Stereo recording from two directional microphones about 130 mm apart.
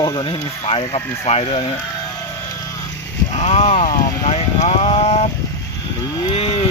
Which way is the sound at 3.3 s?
60° left (ahead or behind).